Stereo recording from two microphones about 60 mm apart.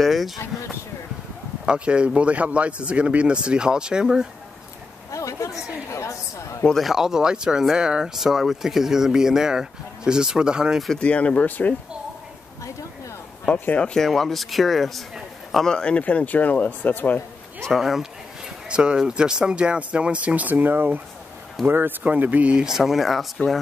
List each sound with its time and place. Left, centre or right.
0.0 s speech: centre
1.7 s speech: centre
5.1 s a sound: left
5.9 s a woman's voice: left
6.8 s speech: centre
11.0 s speech: left
13.5 s speech: left
13.9 s speech: centre
15.6 s speech: centre; by 17.2 s left
17.7 s speech: centre
18.7 s speech: centre
22.7 s speech: centre